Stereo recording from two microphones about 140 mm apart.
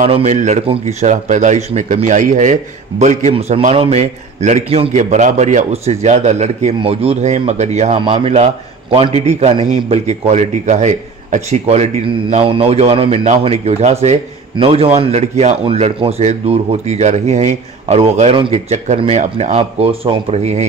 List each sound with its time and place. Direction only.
0.1 s speech: 55° right (ahead or behind)
3.7 s a man's voice: 40° right (ahead or behind)
4.0 s a man's voice: 55° right (ahead or behind)
8.0 s a man's voice: 40° right (ahead or behind)